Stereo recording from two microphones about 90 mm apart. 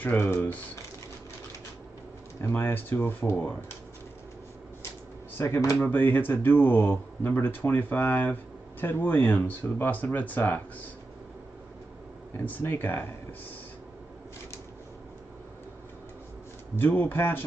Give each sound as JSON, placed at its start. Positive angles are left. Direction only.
{"t": 0.0, "sound": "speech", "side_deg": 25}
{"t": 2.4, "sound": "speech", "side_deg": 25}
{"t": 5.8, "sound": "speech", "side_deg": 20}
{"t": 12.4, "sound": "speech", "side_deg": 20}
{"t": 16.7, "sound": "speech", "side_deg": 20}